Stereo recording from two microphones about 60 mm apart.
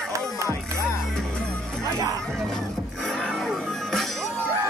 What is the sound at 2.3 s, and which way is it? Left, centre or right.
Music, centre.